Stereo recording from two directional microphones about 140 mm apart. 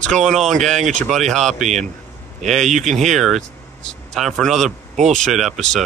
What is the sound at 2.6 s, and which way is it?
Speech, 55° right (ahead or behind).